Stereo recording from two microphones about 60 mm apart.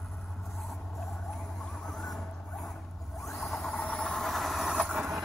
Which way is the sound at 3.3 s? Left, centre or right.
Centre.